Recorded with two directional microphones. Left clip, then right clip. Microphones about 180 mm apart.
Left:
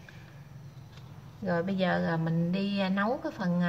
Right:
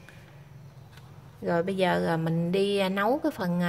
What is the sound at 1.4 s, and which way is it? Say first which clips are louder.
A woman's voice: right 4 dB; 60° right (ahead or behind).